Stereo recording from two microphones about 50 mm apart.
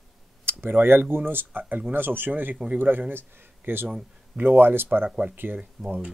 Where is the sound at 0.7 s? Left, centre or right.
Right.